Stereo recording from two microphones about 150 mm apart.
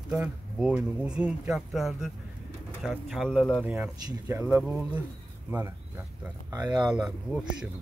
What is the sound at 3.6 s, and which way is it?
Speech, 10° right (ahead or behind).